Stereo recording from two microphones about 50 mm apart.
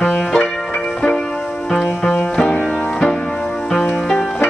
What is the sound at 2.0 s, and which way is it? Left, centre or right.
Music, centre.